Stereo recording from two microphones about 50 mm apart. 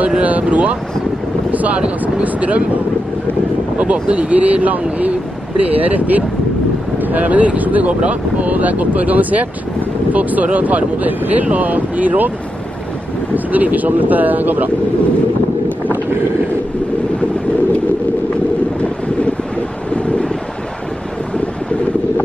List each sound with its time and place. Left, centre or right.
0.2 s speech: right
3.7 s speech: right
13.3 s speech: right